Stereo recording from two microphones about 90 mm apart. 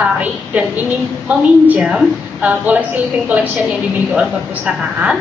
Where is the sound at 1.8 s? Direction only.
10° right (ahead or behind).